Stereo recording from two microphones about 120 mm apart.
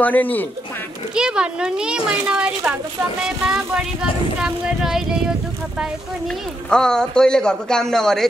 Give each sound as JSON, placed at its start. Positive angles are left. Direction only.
{"t": 0.0, "sound": "speech", "side_deg": 15}
{"t": 1.1, "sound": "a child's voice", "side_deg": -5}